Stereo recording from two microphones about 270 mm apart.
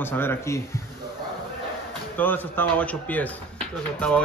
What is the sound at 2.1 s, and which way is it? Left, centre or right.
Speech, centre.